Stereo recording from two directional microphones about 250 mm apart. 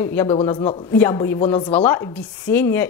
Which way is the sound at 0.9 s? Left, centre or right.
Centre.